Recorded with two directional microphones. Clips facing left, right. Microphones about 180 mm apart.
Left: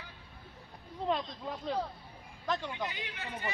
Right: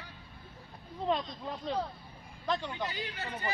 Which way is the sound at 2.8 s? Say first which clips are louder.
Right 3 dB; 35° right (ahead or behind).